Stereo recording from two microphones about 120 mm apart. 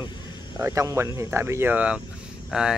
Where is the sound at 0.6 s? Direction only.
25° right (ahead or behind).